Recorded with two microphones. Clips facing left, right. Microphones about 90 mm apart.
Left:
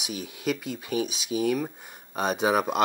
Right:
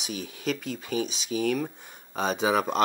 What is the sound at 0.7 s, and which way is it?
Speech, 45° right (ahead or behind).